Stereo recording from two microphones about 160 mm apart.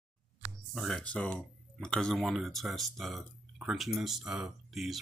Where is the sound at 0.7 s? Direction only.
Centre (ahead or behind).